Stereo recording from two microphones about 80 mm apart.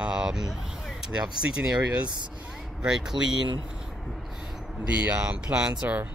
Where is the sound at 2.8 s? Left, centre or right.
Centre.